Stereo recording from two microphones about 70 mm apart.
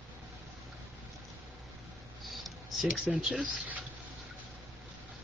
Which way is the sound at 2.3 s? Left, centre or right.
Centre.